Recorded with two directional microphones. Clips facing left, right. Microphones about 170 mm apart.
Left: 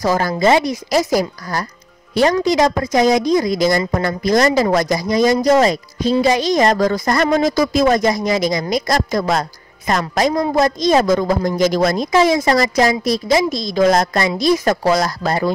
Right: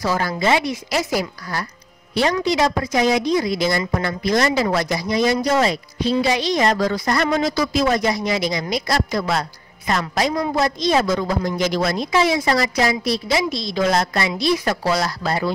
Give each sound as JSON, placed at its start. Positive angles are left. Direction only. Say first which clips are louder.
{"t": 0.0, "sound": "a woman's voice", "louder": "left 5 dB", "side_deg": 40}